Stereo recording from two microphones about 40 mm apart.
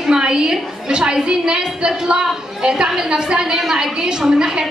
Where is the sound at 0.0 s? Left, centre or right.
Centre.